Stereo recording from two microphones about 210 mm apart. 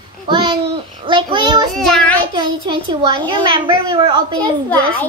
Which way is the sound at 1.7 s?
Centre (ahead or behind).